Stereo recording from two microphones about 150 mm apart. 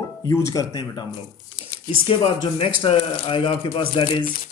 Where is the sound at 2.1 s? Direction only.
35° left (ahead or behind).